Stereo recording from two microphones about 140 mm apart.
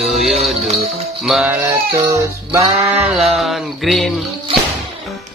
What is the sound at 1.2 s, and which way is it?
Speech, centre (ahead or behind).